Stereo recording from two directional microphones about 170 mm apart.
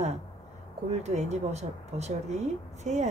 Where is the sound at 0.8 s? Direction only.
40° right (ahead or behind).